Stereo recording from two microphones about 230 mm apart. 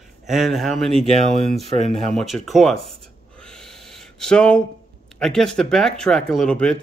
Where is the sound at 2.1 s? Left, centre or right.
Centre.